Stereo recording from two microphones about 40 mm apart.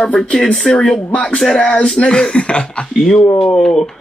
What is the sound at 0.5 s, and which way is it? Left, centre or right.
Speech, centre.